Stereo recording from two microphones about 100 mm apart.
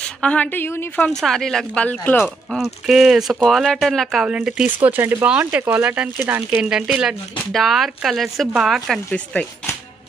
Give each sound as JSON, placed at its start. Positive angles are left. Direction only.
{"t": 0.0, "sound": "a woman's voice", "side_deg": 10}
{"t": 1.2, "sound": "speech", "side_deg": 5}
{"t": 1.9, "sound": "a woman's voice", "side_deg": 15}
{"t": 2.2, "sound": "speech", "side_deg": -5}
{"t": 4.7, "sound": "speech", "side_deg": -20}
{"t": 6.6, "sound": "speech", "side_deg": -10}
{"t": 9.1, "sound": "a woman's voice", "side_deg": 10}